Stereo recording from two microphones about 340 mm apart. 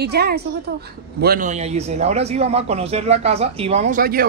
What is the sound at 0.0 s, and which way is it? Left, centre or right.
A woman's voice, right.